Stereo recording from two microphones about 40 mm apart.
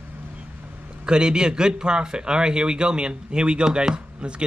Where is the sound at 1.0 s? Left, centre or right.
Right.